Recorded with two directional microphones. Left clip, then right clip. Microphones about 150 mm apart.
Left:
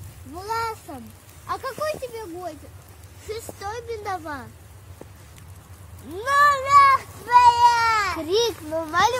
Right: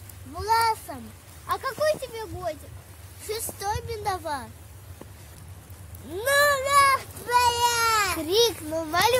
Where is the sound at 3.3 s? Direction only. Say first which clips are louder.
Right 2 dB; 25° right (ahead or behind).